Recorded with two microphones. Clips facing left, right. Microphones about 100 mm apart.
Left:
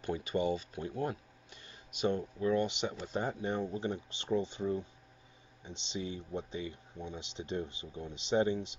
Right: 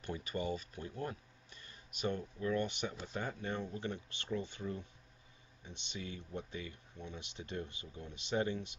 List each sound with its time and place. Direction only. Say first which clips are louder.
0.0 s speech: left 7 dB; 20° left (ahead or behind)